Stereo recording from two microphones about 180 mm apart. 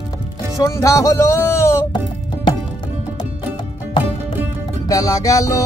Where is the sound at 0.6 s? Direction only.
15° left (ahead or behind).